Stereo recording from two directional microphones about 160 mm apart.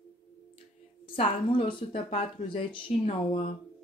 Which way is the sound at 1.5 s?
35° left (ahead or behind).